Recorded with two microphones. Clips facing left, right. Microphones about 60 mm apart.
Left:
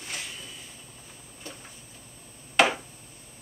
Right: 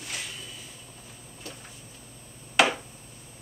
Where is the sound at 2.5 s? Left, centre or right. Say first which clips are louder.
Even; centre.